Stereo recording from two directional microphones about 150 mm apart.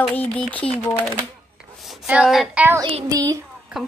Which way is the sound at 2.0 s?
10° right (ahead or behind).